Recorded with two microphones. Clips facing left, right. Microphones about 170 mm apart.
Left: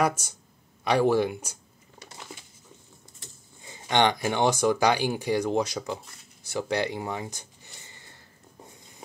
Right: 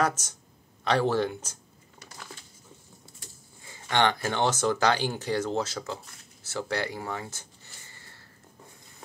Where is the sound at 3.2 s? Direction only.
20° left (ahead or behind).